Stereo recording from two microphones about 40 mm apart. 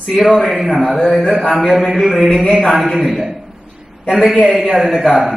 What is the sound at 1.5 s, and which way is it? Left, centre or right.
A man's voice, centre.